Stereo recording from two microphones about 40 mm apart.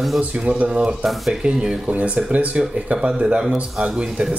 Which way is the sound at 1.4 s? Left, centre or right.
Right.